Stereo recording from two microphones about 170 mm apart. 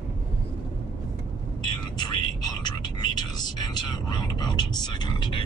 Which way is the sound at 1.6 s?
25° left (ahead or behind).